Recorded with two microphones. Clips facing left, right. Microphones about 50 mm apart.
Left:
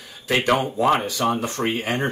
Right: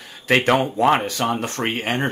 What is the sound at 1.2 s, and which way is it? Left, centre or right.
Speech, right.